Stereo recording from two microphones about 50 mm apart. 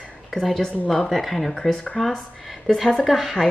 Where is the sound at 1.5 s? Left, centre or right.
Centre.